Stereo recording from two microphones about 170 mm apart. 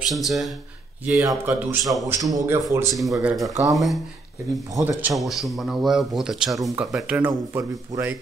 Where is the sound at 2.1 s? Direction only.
20° right (ahead or behind).